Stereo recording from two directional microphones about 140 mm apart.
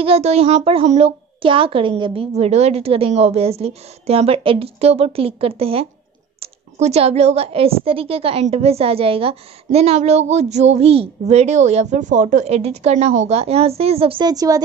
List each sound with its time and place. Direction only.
0.0 s a woman's voice: 45° right (ahead or behind)
14.2 s a woman's voice: 25° right (ahead or behind)